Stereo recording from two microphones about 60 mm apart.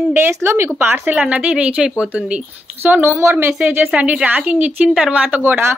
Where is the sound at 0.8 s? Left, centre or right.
Right.